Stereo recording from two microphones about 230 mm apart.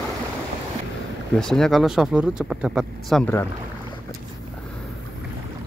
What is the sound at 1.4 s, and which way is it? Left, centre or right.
Speech, centre.